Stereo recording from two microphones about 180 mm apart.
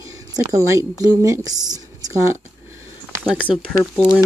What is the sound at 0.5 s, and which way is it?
Speech, 15° right (ahead or behind).